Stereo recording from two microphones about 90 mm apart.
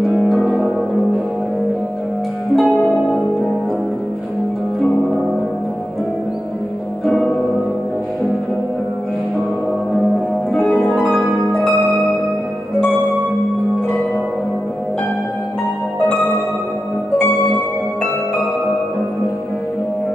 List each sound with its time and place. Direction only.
0.0 s music: centre (ahead or behind)
4.7 s music: centre (ahead or behind)
10.0 s music: centre (ahead or behind)
10.6 s harp: 15° left (ahead or behind)
11.0 s harp: centre (ahead or behind)